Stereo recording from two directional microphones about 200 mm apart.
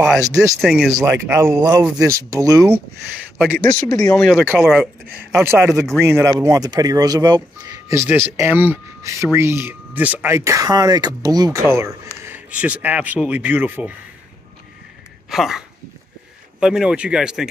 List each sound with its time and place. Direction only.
0.6 s speech: centre (ahead or behind)
0.9 s speech: 15° right (ahead or behind)
3.5 s speech: 5° left (ahead or behind)
4.2 s speech: centre (ahead or behind)
15.2 s speech: centre (ahead or behind)